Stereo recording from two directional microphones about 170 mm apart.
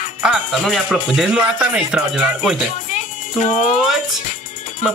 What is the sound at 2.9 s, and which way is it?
Music, 50° left (ahead or behind).